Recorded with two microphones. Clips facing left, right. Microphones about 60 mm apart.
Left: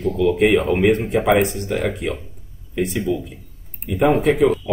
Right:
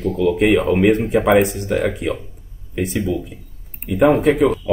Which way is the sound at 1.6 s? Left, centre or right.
Right.